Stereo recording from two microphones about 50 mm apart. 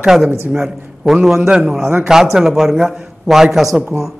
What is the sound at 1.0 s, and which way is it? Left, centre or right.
A man's voice, centre.